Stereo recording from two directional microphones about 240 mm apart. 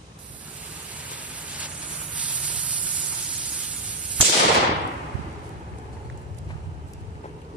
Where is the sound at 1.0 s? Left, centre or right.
Centre.